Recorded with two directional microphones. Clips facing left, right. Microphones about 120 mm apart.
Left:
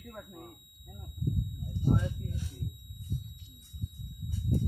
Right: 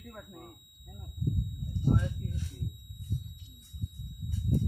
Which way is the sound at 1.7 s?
10° left (ahead or behind).